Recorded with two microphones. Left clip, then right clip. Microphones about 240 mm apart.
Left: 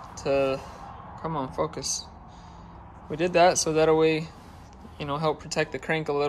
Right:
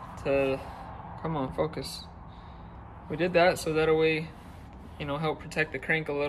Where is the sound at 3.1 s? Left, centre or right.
Centre.